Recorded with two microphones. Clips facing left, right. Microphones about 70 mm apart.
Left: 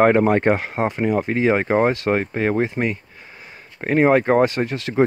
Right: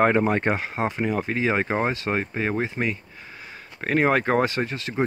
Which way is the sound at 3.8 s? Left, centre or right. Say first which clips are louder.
Left 5 dB; left.